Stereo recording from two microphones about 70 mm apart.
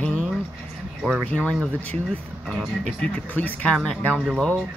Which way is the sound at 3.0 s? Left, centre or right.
Left.